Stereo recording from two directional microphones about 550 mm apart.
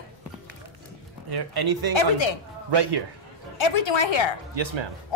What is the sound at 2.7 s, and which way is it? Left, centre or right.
Speech, right.